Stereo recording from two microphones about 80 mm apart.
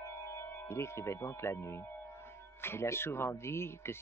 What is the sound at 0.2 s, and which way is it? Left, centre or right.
Music, left.